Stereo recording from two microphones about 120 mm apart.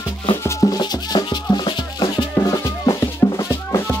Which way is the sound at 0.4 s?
30° left (ahead or behind).